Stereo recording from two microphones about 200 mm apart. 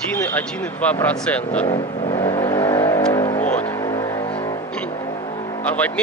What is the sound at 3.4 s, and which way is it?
Vehicle, 10° left (ahead or behind).